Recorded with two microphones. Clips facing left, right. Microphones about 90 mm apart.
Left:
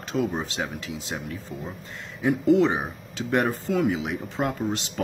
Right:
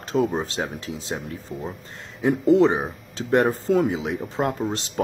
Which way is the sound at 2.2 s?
35° right (ahead or behind).